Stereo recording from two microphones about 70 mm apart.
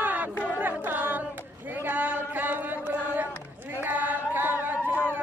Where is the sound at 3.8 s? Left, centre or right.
Right.